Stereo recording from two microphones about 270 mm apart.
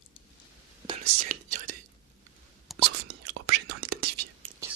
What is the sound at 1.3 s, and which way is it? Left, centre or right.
Whispering, right.